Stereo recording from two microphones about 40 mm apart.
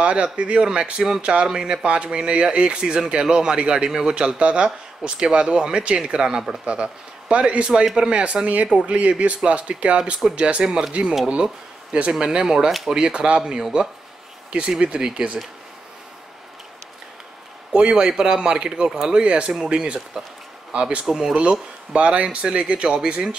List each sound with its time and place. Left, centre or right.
0.0 s speech: right; by 6.6 s centre
6.6 s speech: right
10.6 s speech: centre
10.9 s speech: right
15.0 s speech: centre
17.7 s speech: right
18.9 s speech: centre
19.1 s speech: right
21.0 s speech: centre
21.4 s speech: right